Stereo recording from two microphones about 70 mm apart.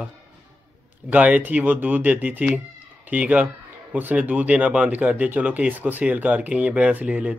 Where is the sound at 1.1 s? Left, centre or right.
Right.